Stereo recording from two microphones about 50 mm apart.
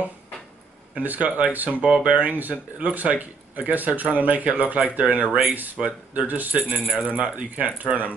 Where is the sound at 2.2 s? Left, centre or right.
Right.